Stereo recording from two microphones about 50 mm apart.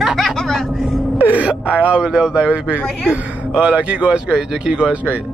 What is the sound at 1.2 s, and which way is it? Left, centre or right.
Speech, right.